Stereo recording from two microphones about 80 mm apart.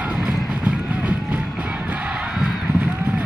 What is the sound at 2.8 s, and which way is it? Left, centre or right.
Boat, right.